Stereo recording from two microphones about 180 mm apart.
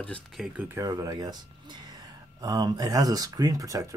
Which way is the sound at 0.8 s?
20° right (ahead or behind).